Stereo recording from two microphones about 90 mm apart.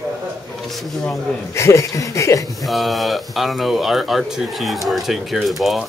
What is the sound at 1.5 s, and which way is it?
Speech, 30° left (ahead or behind).